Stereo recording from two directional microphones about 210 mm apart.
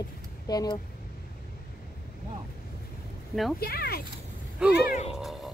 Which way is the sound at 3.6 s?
45° left (ahead or behind).